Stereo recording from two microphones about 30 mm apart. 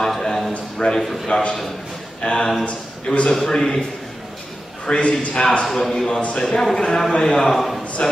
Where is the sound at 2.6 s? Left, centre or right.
Left.